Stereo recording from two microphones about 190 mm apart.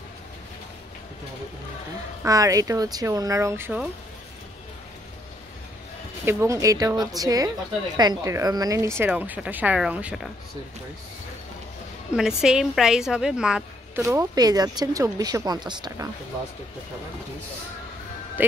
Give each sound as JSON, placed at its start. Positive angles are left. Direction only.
{"t": 2.2, "sound": "speech", "side_deg": -20}
{"t": 6.2, "sound": "speech", "side_deg": -15}
{"t": 12.1, "sound": "a woman's voice", "side_deg": -5}
{"t": 14.0, "sound": "speech", "side_deg": -15}